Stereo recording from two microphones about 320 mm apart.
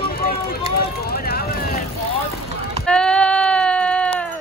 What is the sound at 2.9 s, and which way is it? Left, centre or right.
Sheep, centre.